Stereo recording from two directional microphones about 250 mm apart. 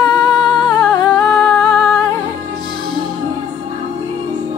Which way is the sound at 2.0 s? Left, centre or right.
Centre.